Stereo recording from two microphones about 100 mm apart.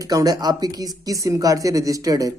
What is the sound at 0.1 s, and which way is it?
Speech, 40° right (ahead or behind).